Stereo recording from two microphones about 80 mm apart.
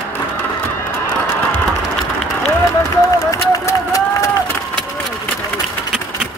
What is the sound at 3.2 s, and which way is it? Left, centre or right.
Run, left.